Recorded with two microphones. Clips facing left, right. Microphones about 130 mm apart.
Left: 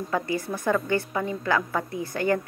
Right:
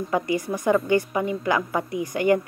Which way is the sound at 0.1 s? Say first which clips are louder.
Right 3 dB; 15° right (ahead or behind).